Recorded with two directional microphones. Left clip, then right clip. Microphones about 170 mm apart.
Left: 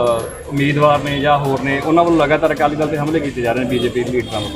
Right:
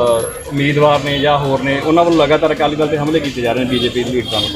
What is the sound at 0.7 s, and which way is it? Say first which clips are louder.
Speech: right 2 dB; 25° right (ahead or behind).